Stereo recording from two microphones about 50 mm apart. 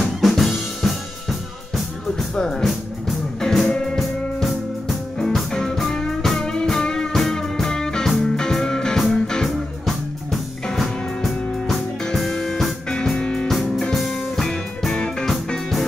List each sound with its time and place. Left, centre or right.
0.0 s drum kit: centre
2.3 s music: centre
12.9 s music: centre
13.5 s music: centre